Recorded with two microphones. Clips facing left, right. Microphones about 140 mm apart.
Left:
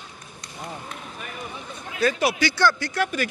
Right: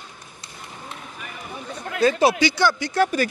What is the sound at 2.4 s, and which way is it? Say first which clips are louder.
Speech: right 1 dB; 15° right (ahead or behind).